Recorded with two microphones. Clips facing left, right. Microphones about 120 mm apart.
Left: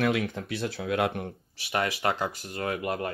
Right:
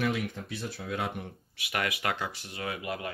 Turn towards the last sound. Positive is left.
turn(degrees=45)  # may be behind; listen again after turning